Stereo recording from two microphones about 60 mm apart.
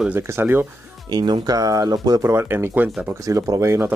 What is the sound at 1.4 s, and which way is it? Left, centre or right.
Speech, right.